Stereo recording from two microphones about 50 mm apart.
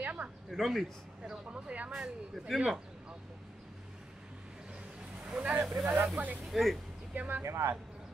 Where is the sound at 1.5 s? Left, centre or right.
Right.